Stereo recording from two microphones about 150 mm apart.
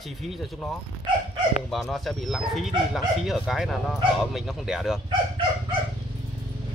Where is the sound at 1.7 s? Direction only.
Centre (ahead or behind).